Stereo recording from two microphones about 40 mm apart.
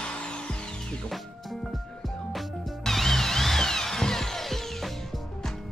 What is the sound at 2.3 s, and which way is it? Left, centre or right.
Music, centre.